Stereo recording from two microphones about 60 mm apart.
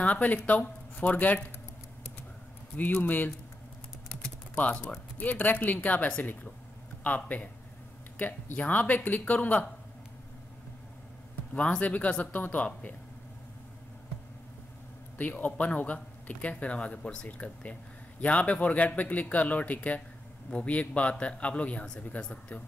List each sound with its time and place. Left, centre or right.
0.0 s speech: left
2.7 s speech: left
4.6 s speech: left
11.5 s speech: left
15.1 s speech: left